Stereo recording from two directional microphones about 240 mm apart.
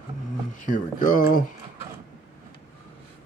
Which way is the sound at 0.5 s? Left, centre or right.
Left.